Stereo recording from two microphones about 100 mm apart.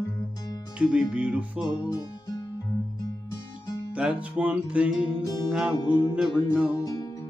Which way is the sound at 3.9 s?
15° right (ahead or behind).